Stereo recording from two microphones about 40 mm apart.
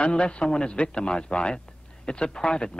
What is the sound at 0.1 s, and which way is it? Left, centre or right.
A man's voice, left.